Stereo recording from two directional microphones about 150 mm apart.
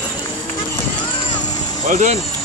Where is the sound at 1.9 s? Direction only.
55° right (ahead or behind).